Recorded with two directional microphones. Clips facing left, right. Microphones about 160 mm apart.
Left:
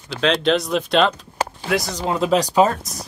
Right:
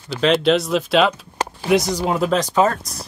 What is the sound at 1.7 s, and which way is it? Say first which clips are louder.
Speech: right 7 dB; 20° right (ahead or behind).